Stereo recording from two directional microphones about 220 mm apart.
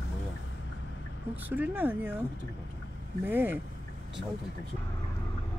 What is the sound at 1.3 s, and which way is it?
Speech, 10° right (ahead or behind).